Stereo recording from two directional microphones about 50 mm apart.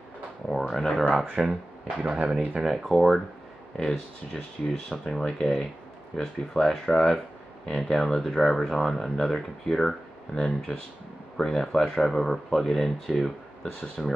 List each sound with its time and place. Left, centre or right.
0.5 s speech: centre
1.4 s speech: centre
2.6 s speech: centre
3.7 s speech: centre
10.3 s speech: centre